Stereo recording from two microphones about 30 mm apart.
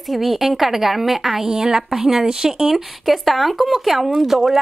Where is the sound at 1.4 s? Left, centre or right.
Centre.